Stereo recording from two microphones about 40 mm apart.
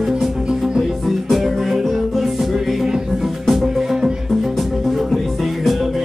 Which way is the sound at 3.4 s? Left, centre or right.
Centre.